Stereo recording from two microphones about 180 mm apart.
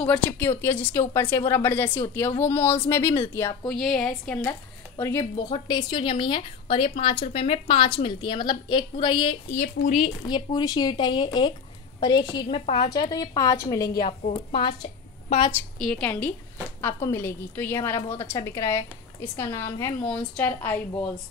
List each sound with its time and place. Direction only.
0.0 s a woman's voice: 5° left (ahead or behind)
3.6 s a woman's voice: 5° left (ahead or behind)
5.2 s a woman's voice: 25° left (ahead or behind)
14.0 s a woman's voice: 35° left (ahead or behind)
15.8 s a woman's voice: 5° left (ahead or behind)